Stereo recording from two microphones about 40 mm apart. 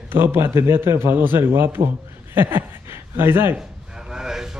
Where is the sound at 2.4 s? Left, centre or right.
Right.